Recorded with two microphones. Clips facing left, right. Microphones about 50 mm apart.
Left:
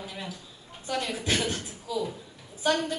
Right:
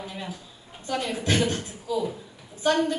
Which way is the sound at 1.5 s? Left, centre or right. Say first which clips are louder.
Right 4 dB; centre.